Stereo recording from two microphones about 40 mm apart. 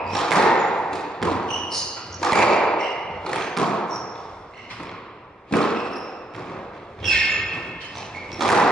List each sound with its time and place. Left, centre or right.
0.1 s thump: centre
5.5 s thump: centre
7.0 s a sound: centre